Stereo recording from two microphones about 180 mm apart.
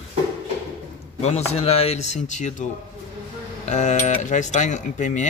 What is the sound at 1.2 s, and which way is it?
Speech, 35° left (ahead or behind).